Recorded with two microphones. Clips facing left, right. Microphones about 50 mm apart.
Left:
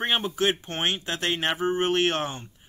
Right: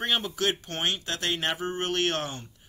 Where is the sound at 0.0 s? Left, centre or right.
Left.